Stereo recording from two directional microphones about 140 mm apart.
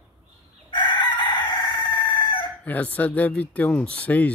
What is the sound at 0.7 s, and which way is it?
Crowing, 35° left (ahead or behind).